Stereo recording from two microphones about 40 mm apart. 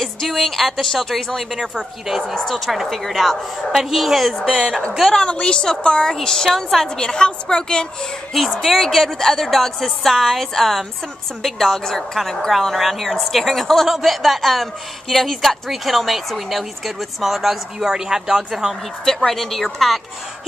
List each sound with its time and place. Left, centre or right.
0.0 s a woman's voice: centre
2.3 s a woman's voice: centre
3.7 s a woman's voice: centre
5.2 s a woman's voice: left
8.3 s a woman's voice: centre
19.0 s a woman's voice: centre